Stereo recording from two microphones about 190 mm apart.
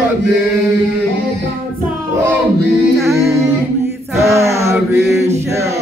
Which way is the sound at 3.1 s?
15° right (ahead or behind).